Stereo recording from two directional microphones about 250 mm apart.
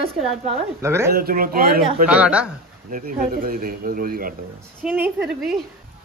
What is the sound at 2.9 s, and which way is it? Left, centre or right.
Speech, right.